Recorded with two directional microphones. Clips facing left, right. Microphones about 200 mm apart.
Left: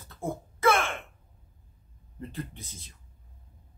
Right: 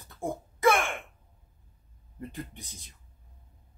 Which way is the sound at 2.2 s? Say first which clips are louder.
Left 1 dB; 15° right (ahead or behind).